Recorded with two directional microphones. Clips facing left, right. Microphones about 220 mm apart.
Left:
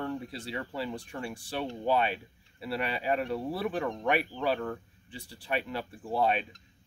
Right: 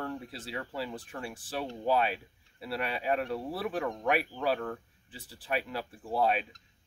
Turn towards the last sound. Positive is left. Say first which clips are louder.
# left 1 dB
turn(degrees=0)  # may be behind; listen again after turning